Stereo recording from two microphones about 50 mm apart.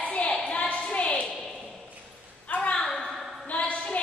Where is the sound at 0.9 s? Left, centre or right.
Left.